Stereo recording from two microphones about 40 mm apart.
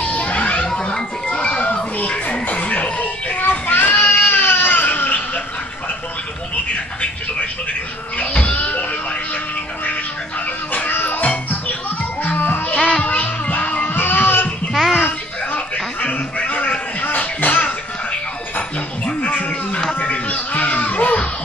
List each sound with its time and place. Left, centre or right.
0.0 s music: left
1.4 s children playing: left
2.0 s music: left
3.4 s baby cry: left
8.2 s music: left
11.1 s music: left
12.7 s music: left
13.0 s music: left
14.7 s music: centre
15.0 s a sound: left
16.3 s a sound: left
17.0 s music: left
20.0 s music: left